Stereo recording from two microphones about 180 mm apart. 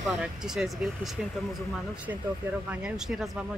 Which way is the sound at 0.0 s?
5° right (ahead or behind).